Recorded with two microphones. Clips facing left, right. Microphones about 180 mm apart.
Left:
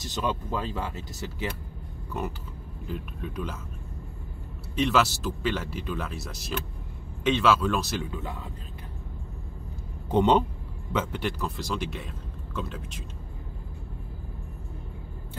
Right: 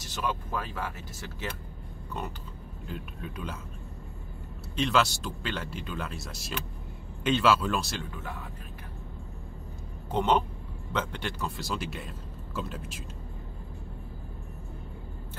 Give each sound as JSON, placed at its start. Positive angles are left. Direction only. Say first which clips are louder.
{"t": 0.1, "sound": "speech", "louder": "left 3 dB", "side_deg": 20}
{"t": 2.9, "sound": "speech", "louder": "left 4 dB", "side_deg": 0}
{"t": 4.7, "sound": "speech", "louder": "left 2 dB", "side_deg": 5}
{"t": 8.1, "sound": "speech", "louder": "left 4 dB", "side_deg": 20}
{"t": 10.1, "sound": "a man's voice", "louder": "left 4 dB", "side_deg": 15}
{"t": 10.9, "sound": "speech", "louder": "left 4 dB", "side_deg": 5}